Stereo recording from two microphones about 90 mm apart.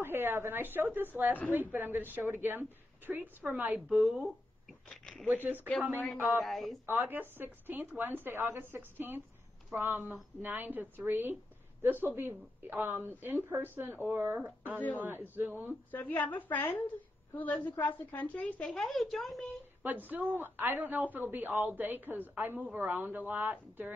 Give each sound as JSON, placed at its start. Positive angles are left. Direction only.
{"t": 0.0, "sound": "a woman's voice", "side_deg": -25}
{"t": 3.9, "sound": "speech", "side_deg": 0}
{"t": 4.8, "sound": "a sound", "side_deg": 5}
{"t": 5.2, "sound": "a woman's voice", "side_deg": -20}
{"t": 6.4, "sound": "speech", "side_deg": 0}
{"t": 6.9, "sound": "a woman's voice", "side_deg": -20}
{"t": 15.9, "sound": "a woman's voice", "side_deg": 20}
{"t": 18.7, "sound": "speech", "side_deg": 5}
{"t": 19.8, "sound": "a woman's voice", "side_deg": -20}